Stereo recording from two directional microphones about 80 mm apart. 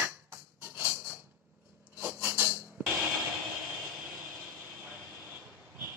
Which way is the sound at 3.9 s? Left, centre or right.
Centre.